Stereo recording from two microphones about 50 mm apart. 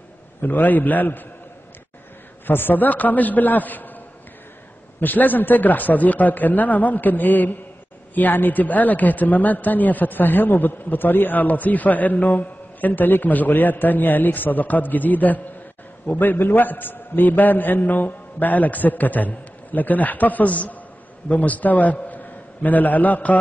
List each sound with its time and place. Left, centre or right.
0.4 s a man's voice: left
2.4 s a man's voice: left
5.0 s a man's voice: left